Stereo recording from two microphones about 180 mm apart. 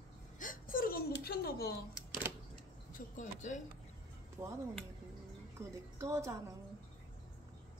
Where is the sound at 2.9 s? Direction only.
45° left (ahead or behind).